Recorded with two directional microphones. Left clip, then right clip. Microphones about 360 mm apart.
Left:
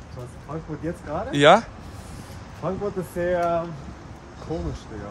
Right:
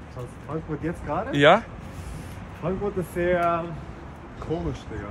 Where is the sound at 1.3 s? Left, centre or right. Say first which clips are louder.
Left 2 dB; centre.